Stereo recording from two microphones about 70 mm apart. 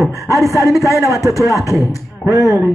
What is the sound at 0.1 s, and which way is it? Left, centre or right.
A man's voice, left.